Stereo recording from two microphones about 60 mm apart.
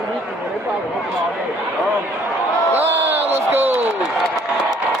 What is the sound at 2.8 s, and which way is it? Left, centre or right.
Speech, right.